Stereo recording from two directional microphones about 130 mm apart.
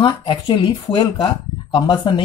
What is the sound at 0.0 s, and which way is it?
Speech, 40° left (ahead or behind).